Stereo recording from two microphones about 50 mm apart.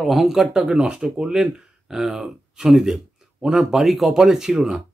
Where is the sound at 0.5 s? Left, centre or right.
Centre.